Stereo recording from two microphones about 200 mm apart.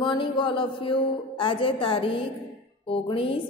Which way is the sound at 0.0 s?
25° left (ahead or behind).